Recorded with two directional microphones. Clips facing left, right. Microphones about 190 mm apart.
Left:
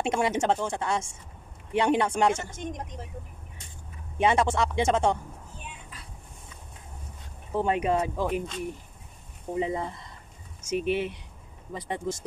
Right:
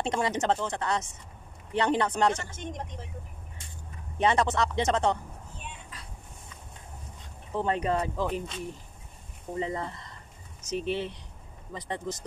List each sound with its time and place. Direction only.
0.0 s speech: 10° left (ahead or behind)
4.2 s speech: 10° left (ahead or behind)
7.5 s speech: 10° left (ahead or behind)
9.5 s speech: 15° left (ahead or behind)